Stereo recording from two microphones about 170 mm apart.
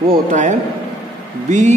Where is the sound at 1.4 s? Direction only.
45° right (ahead or behind).